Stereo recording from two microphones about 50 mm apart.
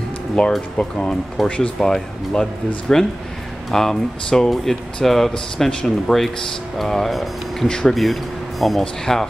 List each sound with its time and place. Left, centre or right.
0.4 s speech: centre
1.4 s speech: centre
7.6 s speech: centre
7.9 s speech: centre